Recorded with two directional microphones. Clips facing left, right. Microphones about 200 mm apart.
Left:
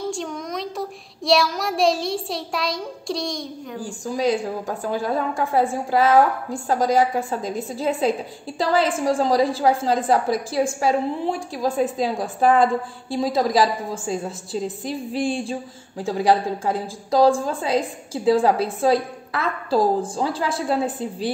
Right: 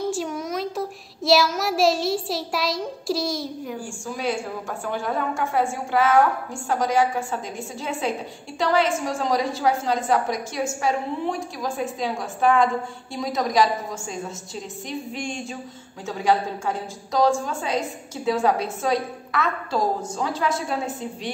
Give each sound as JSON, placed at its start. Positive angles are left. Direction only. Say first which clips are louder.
{"t": 0.1, "sound": "a child's voice", "louder": "right 1 dB", "side_deg": -5}
{"t": 3.8, "sound": "a woman's voice", "louder": "left 8 dB", "side_deg": 35}